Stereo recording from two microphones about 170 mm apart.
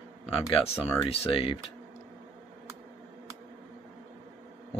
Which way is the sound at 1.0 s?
35° left (ahead or behind).